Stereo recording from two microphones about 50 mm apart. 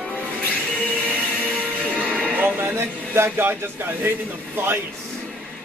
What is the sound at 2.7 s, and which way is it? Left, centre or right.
A man's voice, right.